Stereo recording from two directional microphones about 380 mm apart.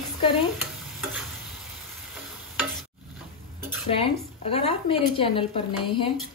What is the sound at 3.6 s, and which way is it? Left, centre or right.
A woman's voice, centre.